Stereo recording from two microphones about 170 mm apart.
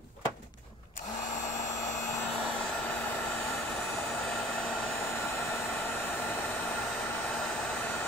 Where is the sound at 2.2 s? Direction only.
5° left (ahead or behind).